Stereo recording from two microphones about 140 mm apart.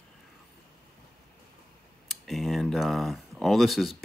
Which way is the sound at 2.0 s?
Centre (ahead or behind).